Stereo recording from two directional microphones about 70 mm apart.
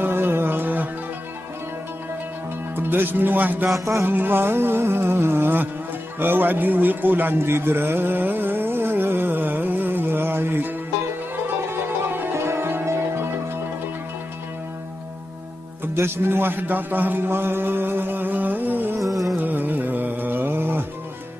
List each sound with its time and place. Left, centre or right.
0.0 s music: right
2.7 s music: right
11.7 s music: right
15.8 s music: right
18.9 s music: right
19.4 s music: right